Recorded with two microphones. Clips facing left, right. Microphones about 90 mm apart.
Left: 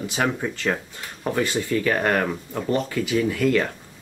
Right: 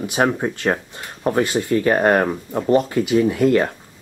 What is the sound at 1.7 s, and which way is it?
Speech, 35° right (ahead or behind).